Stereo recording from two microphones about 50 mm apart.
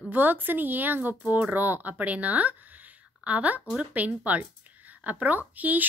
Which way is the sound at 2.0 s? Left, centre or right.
Right.